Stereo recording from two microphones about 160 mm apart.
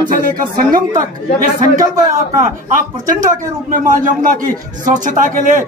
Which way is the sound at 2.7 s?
55° right (ahead or behind).